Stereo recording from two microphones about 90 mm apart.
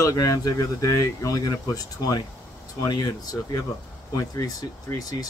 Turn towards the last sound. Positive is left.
turn(degrees=45)  # may be behind; listen again after turning